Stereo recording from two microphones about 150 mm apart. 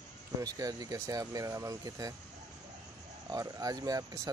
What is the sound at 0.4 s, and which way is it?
Speech, 25° right (ahead or behind).